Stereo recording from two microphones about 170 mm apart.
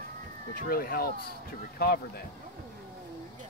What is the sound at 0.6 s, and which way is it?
Speech, 60° left (ahead or behind).